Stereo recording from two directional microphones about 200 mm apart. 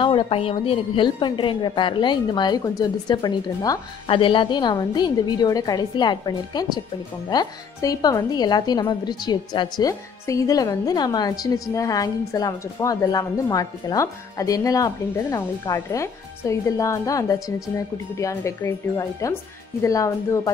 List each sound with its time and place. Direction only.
0.0 s a woman's voice: 25° left (ahead or behind)